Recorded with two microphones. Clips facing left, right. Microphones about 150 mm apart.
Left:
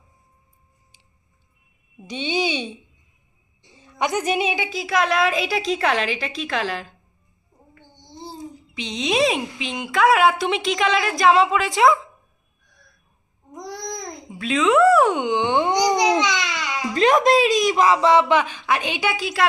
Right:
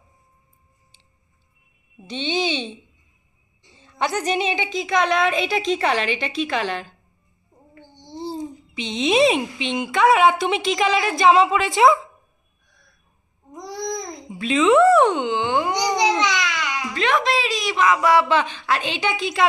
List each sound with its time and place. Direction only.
2.0 s a woman's voice: 10° left (ahead or behind)
3.8 s a child's voice: 15° left (ahead or behind)
8.4 s a child's voice: centre (ahead or behind)
13.5 s babbling: centre (ahead or behind)
15.1 s a woman's voice: 15° left (ahead or behind)
16.2 s babbling: 20° left (ahead or behind)
16.9 s a woman's voice: 40° left (ahead or behind); by 19.4 s 5° left (ahead or behind)